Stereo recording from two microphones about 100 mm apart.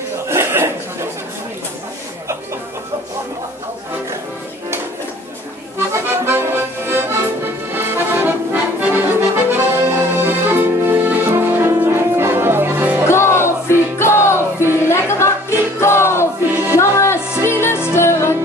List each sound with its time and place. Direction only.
0.3 s a sound: 25° right (ahead or behind)
5.8 s accordion: 25° right (ahead or behind)
11.7 s music: 25° right (ahead or behind)
13.0 s music: 25° left (ahead or behind)